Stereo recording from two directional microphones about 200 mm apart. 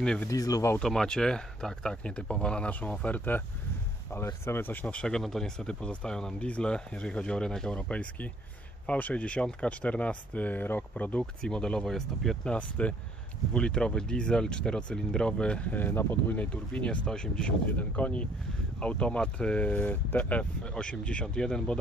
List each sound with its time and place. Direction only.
0.0 s speech: 5° left (ahead or behind)
0.3 s speech: 15° left (ahead or behind)
0.8 s speech: 5° left (ahead or behind)